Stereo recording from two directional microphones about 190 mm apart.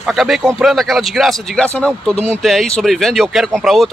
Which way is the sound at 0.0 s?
Centre (ahead or behind).